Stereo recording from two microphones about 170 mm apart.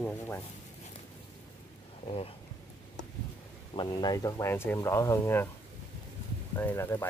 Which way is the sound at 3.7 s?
25° left (ahead or behind).